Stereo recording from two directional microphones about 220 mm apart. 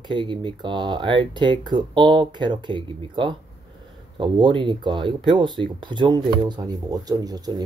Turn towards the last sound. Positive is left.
turn(degrees=-15)  # may be behind; listen again after turning